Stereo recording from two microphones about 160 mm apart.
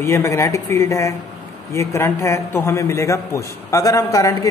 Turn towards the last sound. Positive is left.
turn(degrees=20)  # may be behind; listen again after turning